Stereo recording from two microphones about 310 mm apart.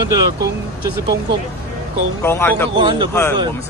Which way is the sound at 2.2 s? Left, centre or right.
Centre.